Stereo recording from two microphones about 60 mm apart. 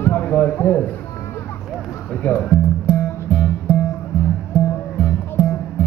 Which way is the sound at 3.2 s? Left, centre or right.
Left.